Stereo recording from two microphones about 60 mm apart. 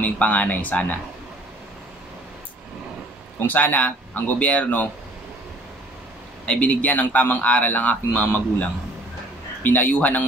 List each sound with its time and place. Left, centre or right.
0.0 s speech: left
3.4 s speech: left
6.4 s speech: centre